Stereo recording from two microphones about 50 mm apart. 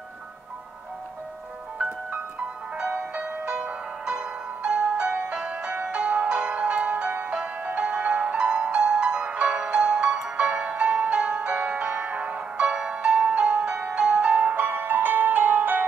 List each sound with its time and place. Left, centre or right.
1.8 s music: right